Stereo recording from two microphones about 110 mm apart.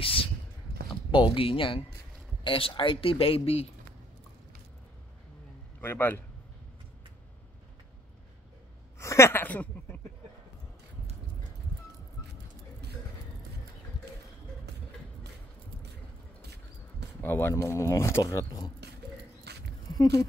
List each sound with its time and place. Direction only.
0.0 s a sound: 55° left (ahead or behind)
1.1 s speech: 50° left (ahead or behind)
5.8 s speech: 20° left (ahead or behind)
8.9 s a sound: 25° left (ahead or behind)
17.2 s speech: 20° left (ahead or behind)
19.9 s speech: 35° left (ahead or behind)